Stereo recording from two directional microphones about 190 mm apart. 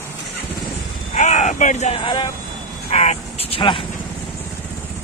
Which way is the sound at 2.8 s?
35° left (ahead or behind).